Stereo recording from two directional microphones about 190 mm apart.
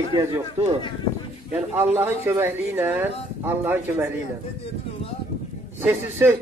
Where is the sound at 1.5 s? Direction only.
10° right (ahead or behind).